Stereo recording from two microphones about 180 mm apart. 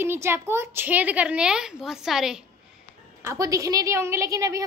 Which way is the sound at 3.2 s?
15° right (ahead or behind).